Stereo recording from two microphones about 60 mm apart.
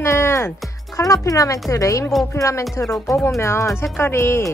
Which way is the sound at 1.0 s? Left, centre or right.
Left.